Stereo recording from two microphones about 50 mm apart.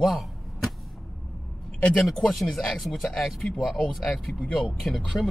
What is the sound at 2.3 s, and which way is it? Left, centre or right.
Speech, centre.